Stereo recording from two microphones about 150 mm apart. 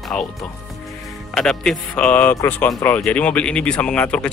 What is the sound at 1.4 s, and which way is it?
Speech, 5° left (ahead or behind).